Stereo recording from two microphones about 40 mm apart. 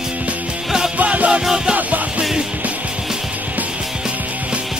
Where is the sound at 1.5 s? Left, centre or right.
Right.